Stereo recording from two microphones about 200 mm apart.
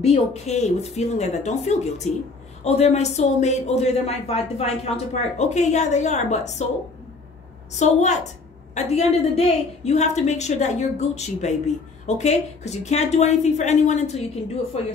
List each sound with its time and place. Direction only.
0.0 s a woman's voice: 35° left (ahead or behind)
7.8 s a woman's voice: 35° left (ahead or behind)